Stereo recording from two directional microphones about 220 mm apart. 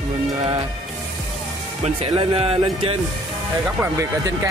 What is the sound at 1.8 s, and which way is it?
Speech, 25° right (ahead or behind).